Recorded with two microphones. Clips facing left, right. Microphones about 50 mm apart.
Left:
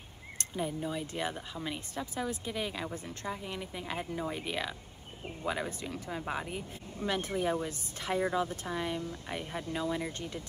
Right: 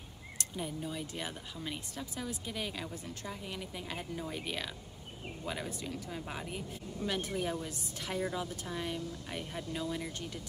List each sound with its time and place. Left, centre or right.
0.6 s speech: left
2.5 s a woman's voice: centre
4.3 s a woman's voice: centre
5.7 s speech: left
6.1 s speech: centre
6.9 s speech: left